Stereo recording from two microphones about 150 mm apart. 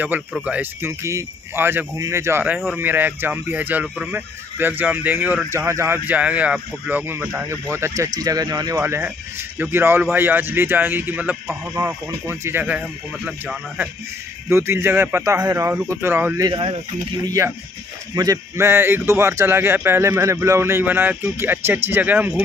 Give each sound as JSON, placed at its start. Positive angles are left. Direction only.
{"t": 0.0, "sound": "speech", "side_deg": -10}
{"t": 16.3, "sound": "speech", "side_deg": -30}